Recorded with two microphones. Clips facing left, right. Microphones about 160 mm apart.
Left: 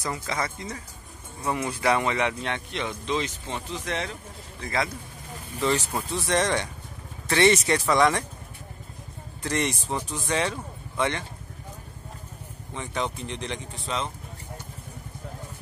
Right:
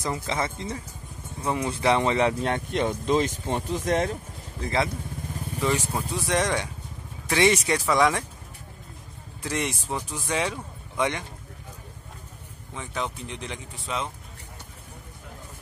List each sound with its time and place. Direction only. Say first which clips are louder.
0.0 s speech: right 2 dB; 25° right (ahead or behind); by 4.6 s 45° right (ahead or behind)
5.6 s speech: left 1 dB; 10° right (ahead or behind)
9.4 s speech: left 2 dB; 5° right (ahead or behind)
12.7 s speech: left 2 dB; centre (ahead or behind)